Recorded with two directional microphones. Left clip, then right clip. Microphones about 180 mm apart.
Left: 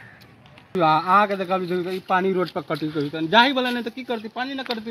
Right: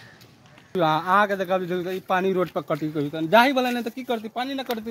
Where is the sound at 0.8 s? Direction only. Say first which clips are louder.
Left 3 dB; 20° right (ahead or behind).